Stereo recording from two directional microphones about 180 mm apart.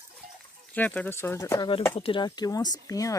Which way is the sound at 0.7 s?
10° left (ahead or behind).